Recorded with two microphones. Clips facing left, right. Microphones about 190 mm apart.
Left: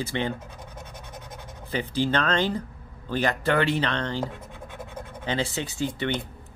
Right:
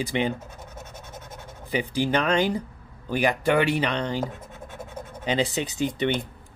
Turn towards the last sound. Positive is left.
turn(degrees=-20)  # may be behind; listen again after turning